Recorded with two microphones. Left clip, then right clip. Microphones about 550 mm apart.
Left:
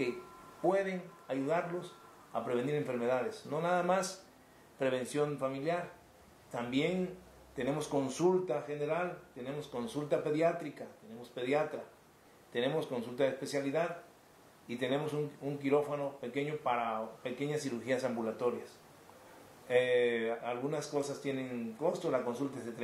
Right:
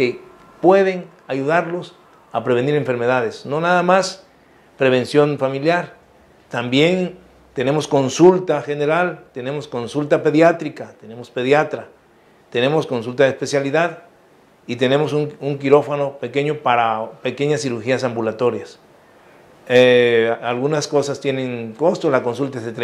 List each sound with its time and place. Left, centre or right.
0.7 s speech: right
19.7 s speech: right